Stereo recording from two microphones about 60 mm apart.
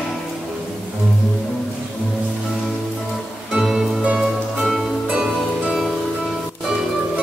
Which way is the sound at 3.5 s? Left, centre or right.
Centre.